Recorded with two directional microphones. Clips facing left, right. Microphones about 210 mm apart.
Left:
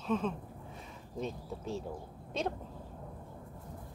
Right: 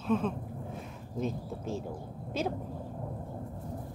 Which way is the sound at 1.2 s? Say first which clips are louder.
Right 4 dB; centre (ahead or behind).